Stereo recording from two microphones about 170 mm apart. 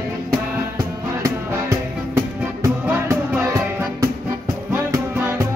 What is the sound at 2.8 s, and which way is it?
Music, 15° right (ahead or behind).